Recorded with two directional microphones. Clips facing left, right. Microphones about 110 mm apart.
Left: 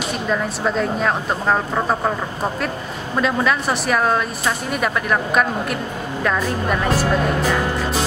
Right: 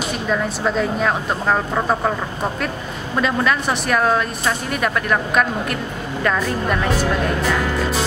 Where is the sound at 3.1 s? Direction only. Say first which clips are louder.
Even; centre (ahead or behind).